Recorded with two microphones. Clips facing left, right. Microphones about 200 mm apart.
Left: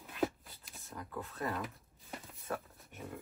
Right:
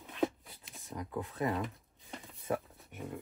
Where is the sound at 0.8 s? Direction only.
15° right (ahead or behind).